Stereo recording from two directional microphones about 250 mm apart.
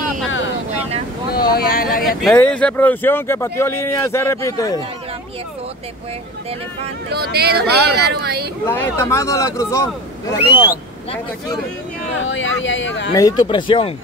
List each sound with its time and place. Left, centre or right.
1.3 s speech: left
2.0 s speech: centre
7.1 s speech: right
8.6 s speech: centre
12.2 s speech: left
13.1 s speech: centre